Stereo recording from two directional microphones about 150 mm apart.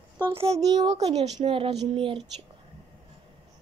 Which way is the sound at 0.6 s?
25° right (ahead or behind).